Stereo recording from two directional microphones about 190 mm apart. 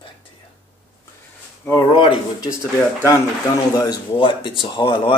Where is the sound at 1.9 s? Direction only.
25° left (ahead or behind).